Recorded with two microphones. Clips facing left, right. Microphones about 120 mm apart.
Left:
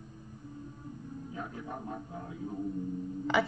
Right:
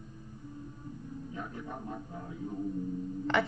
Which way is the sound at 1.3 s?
35° left (ahead or behind).